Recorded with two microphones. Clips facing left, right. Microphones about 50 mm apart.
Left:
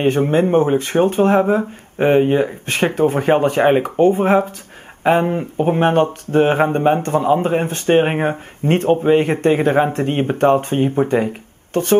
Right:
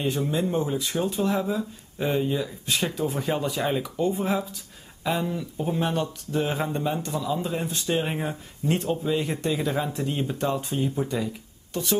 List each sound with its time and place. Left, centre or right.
0.0 s speech: left